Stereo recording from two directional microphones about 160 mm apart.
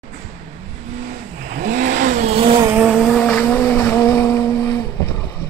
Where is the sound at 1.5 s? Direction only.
55° right (ahead or behind); by 2.6 s 35° right (ahead or behind).